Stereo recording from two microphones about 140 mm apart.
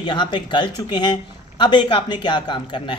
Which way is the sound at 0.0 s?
35° left (ahead or behind).